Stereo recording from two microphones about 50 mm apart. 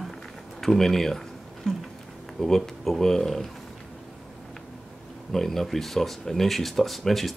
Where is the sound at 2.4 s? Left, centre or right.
Centre.